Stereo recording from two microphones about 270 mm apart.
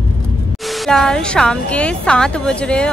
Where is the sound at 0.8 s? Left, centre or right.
Centre.